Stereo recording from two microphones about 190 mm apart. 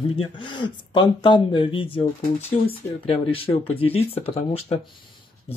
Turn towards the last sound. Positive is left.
turn(degrees=30)  # may be behind; listen again after turning